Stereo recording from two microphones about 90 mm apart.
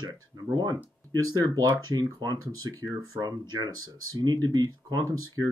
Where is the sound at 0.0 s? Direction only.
45° right (ahead or behind).